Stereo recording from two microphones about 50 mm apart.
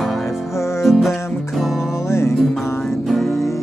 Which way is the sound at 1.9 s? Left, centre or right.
Left.